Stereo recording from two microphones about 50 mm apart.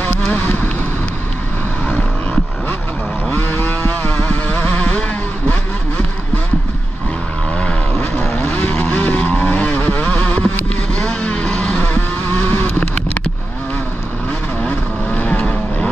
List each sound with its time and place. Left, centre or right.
3.3 s vehicle: left
3.6 s vehicle: left
4.1 s vehicle: left
8.0 s vehicle: left
11.4 s vehicle: centre
11.8 s vehicle: left
14.6 s vehicle: left